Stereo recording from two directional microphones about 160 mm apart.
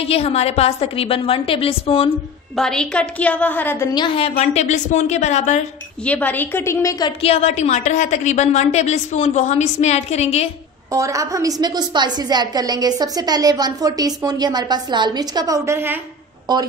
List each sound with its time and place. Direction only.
0.0 s a woman's voice: 40° left (ahead or behind)
2.5 s a woman's voice: 5° left (ahead or behind)
3.9 s a woman's voice: 30° left (ahead or behind)
6.0 s a woman's voice: 10° left (ahead or behind)
7.1 s a woman's voice: 40° left (ahead or behind)
10.9 s a woman's voice: 20° right (ahead or behind)